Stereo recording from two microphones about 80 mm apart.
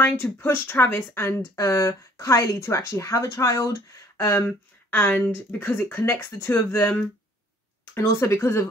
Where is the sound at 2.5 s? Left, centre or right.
Left.